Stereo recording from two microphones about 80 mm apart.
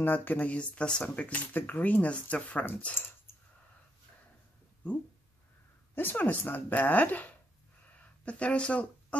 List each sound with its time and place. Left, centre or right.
0.0 s speech: left
5.9 s speech: left